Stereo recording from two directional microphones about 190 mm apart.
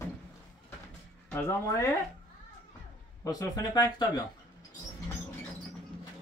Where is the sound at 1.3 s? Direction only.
15° left (ahead or behind).